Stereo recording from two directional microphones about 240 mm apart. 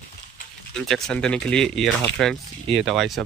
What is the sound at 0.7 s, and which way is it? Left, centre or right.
Speech, centre.